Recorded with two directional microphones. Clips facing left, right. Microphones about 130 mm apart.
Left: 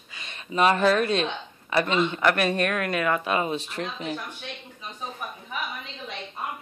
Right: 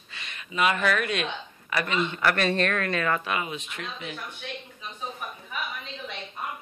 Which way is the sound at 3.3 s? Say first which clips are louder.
Left 5 dB; 35° left (ahead or behind).